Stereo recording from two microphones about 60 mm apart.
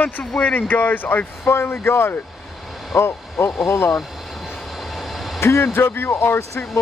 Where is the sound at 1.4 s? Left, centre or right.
Left.